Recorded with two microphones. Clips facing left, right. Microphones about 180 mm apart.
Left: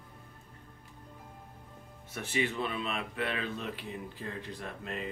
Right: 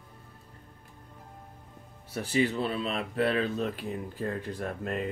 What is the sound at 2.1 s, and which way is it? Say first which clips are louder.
Speech: right 6 dB; 35° right (ahead or behind).